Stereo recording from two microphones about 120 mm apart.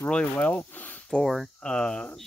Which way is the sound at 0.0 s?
10° left (ahead or behind).